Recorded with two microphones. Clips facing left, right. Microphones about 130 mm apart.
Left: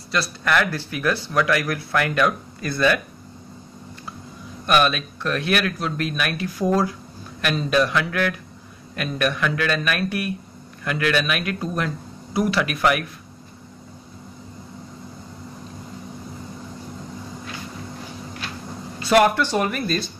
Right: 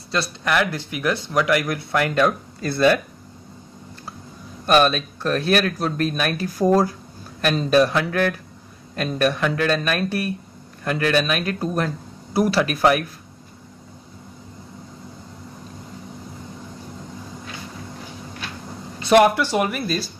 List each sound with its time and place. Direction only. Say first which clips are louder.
0.1 s speech: even; 20° right (ahead or behind)
4.6 s speech: right 3 dB; 35° right (ahead or behind)
19.0 s speech: right 2 dB; 15° right (ahead or behind)